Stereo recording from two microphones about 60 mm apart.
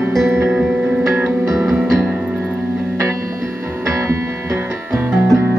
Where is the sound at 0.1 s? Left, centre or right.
Centre.